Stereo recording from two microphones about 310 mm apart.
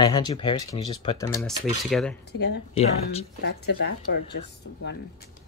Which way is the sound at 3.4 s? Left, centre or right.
Left.